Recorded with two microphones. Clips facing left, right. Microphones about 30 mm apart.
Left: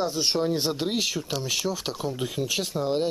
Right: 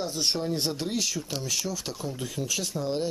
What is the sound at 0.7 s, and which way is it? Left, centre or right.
Speech, left.